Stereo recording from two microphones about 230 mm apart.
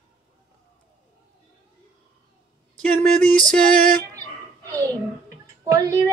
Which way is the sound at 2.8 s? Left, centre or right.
Centre.